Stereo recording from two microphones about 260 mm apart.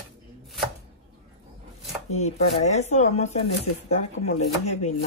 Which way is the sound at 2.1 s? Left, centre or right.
Left.